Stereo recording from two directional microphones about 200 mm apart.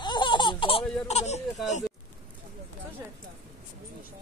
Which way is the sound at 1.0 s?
35° left (ahead or behind).